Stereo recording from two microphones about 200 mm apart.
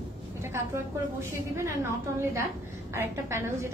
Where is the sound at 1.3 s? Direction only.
15° right (ahead or behind).